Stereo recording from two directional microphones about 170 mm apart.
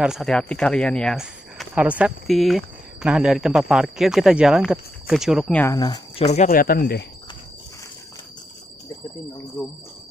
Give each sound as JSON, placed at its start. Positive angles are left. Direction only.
{"t": 0.0, "sound": "speech", "side_deg": 0}
{"t": 5.6, "sound": "speech", "side_deg": 20}
{"t": 6.1, "sound": "speech", "side_deg": 40}
{"t": 6.5, "sound": "speech", "side_deg": 60}